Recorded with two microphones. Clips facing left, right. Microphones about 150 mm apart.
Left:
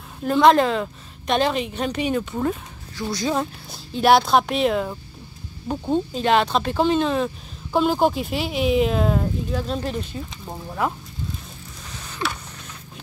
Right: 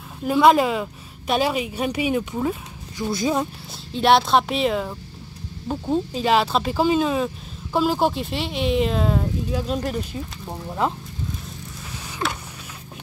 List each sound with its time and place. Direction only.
0.2 s a woman's voice: 5° right (ahead or behind)
3.0 s speech: 25° right (ahead or behind)
3.3 s speech: 5° right (ahead or behind)
9.5 s a woman's voice: 10° right (ahead or behind)
12.2 s a sound: 35° right (ahead or behind)